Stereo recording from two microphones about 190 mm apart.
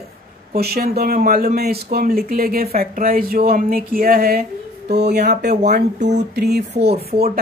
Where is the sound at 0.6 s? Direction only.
55° right (ahead or behind).